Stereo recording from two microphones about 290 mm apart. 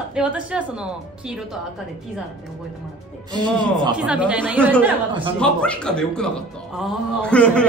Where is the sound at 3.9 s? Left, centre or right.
Centre.